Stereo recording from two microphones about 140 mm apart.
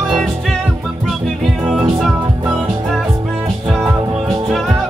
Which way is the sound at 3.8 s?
25° right (ahead or behind).